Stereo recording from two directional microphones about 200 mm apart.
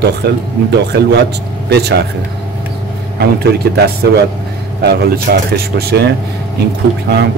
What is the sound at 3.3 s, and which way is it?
Speech, 50° right (ahead or behind).